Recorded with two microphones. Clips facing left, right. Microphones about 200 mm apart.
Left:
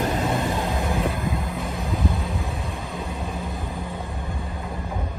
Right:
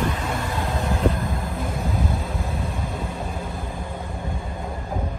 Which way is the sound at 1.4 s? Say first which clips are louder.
Right 1 dB; centre (ahead or behind).